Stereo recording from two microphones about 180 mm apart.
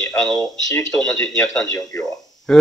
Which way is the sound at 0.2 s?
Centre (ahead or behind).